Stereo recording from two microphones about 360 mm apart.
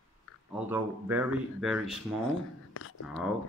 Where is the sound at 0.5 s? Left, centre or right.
Centre.